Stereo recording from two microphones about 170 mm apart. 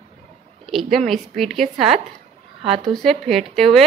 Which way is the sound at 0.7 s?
Centre (ahead or behind).